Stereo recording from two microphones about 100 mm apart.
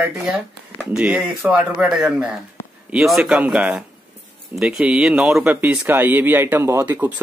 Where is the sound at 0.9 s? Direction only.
5° right (ahead or behind).